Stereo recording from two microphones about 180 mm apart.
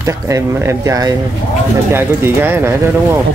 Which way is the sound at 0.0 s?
15° right (ahead or behind).